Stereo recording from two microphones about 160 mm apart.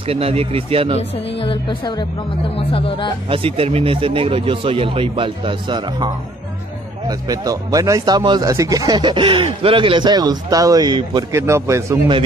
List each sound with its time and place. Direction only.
0.0 s speech: 35° right (ahead or behind)
1.1 s speech: 35° left (ahead or behind)
3.3 s speech: 35° right (ahead or behind); by 12.0 s 15° right (ahead or behind)